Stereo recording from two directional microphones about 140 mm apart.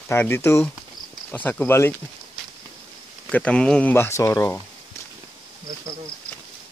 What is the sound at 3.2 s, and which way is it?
Speech, 5° left (ahead or behind).